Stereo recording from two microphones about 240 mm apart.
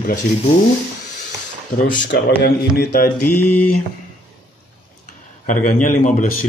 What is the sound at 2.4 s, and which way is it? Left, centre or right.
Speech, left.